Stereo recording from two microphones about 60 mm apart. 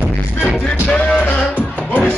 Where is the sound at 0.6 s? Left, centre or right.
Left.